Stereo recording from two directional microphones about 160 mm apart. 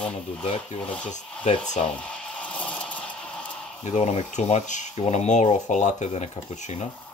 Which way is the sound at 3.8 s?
45° left (ahead or behind).